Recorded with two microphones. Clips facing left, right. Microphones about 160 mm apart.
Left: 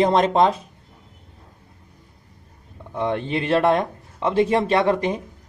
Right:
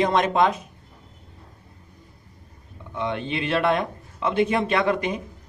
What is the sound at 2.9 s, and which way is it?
A man's voice, 40° left (ahead or behind).